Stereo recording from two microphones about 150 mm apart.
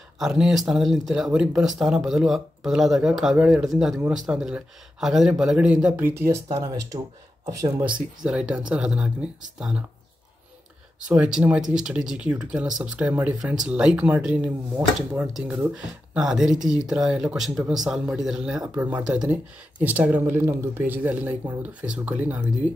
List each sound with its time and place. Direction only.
0.2 s speech: centre (ahead or behind); by 7.8 s 25° right (ahead or behind)
7.8 s speech: 5° right (ahead or behind)
11.1 s speech: 5° right (ahead or behind)